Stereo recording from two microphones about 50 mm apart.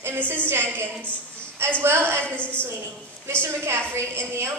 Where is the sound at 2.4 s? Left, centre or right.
Left.